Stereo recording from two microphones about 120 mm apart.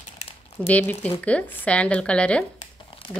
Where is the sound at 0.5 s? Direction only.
15° left (ahead or behind).